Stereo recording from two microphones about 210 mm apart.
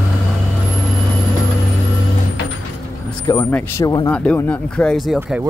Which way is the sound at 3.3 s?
10° left (ahead or behind).